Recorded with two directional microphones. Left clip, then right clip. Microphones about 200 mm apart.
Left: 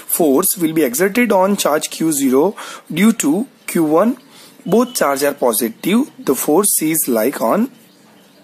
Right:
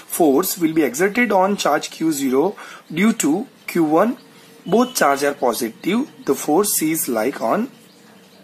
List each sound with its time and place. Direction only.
0.1 s speech: 50° left (ahead or behind)